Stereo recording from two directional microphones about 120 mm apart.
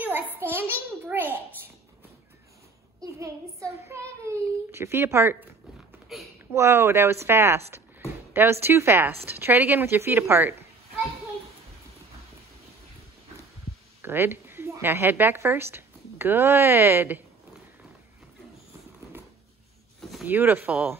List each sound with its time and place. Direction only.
0.0 s a sound: 15° right (ahead or behind)
3.0 s a child's voice: 25° right (ahead or behind)
6.1 s speech: centre (ahead or behind)
6.5 s a woman's voice: 20° right (ahead or behind)
14.0 s a woman's voice: 20° right (ahead or behind)
20.0 s a sound: centre (ahead or behind)
20.2 s speech: 15° right (ahead or behind)